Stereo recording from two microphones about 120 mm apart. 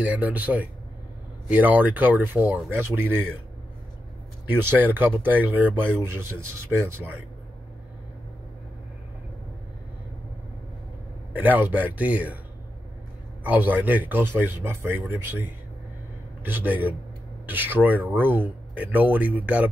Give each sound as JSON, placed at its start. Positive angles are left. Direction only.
{"t": 0.0, "sound": "speech", "side_deg": -15}
{"t": 4.6, "sound": "speech", "side_deg": -15}
{"t": 11.3, "sound": "speech", "side_deg": -15}
{"t": 13.4, "sound": "speech", "side_deg": -15}
{"t": 16.4, "sound": "speech", "side_deg": -15}